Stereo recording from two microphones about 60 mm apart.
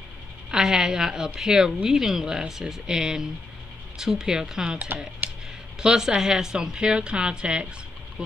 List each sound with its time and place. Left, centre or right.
0.5 s a woman's voice: centre
4.6 s speech: right
5.8 s a woman's voice: centre